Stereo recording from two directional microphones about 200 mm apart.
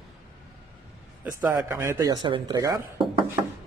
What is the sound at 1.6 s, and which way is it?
A man's voice, 15° right (ahead or behind).